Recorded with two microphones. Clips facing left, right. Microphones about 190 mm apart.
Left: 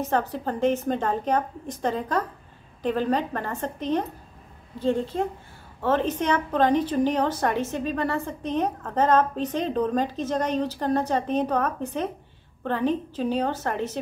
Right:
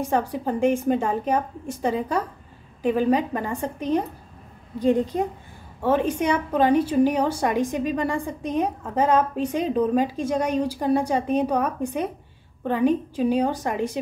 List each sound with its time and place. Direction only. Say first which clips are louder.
0.0 s a woman's voice: right 2 dB; 10° right (ahead or behind)